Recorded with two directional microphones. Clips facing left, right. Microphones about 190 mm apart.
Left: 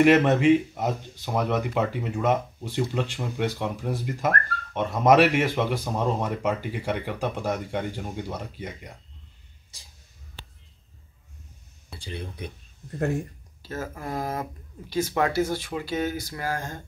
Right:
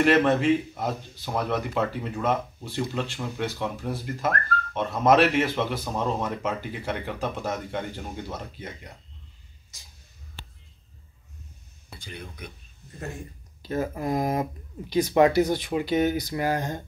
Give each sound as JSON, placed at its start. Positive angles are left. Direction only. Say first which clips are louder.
{"t": 0.0, "sound": "speech", "louder": "left 2 dB", "side_deg": 15}
{"t": 9.7, "sound": "a sound", "louder": "left 1 dB", "side_deg": 30}
{"t": 12.0, "sound": "speech", "louder": "left 5 dB", "side_deg": 30}
{"t": 13.6, "sound": "speech", "louder": "right 6 dB", "side_deg": -15}